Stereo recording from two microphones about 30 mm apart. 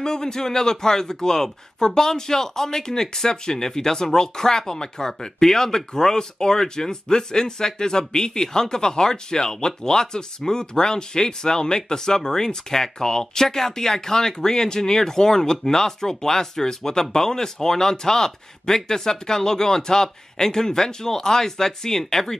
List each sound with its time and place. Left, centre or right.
0.0 s speech: left